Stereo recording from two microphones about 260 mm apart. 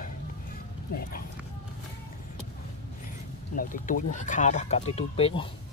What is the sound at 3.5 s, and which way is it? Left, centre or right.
Speech, left.